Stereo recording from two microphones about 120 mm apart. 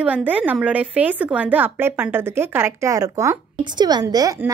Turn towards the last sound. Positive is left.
turn(degrees=-30)  # may be behind; listen again after turning